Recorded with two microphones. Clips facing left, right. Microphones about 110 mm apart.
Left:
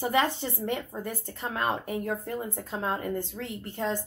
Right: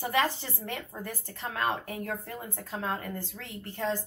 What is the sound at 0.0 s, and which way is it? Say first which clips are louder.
A woman's voice: left 2 dB; 20° left (ahead or behind).